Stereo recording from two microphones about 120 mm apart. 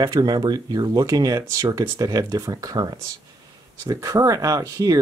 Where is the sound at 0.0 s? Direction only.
35° right (ahead or behind).